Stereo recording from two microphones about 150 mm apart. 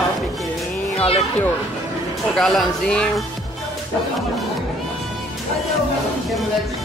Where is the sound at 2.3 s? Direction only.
5° left (ahead or behind).